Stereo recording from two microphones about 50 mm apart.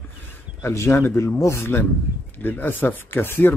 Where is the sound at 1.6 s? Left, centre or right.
Left.